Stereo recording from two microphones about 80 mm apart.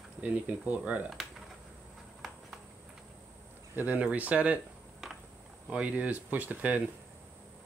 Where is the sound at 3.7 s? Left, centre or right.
Right.